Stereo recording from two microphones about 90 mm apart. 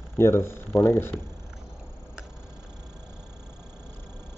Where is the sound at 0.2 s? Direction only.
30° left (ahead or behind).